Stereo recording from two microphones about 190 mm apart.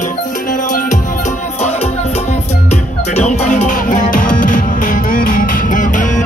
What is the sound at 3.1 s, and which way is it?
Music, 35° left (ahead or behind).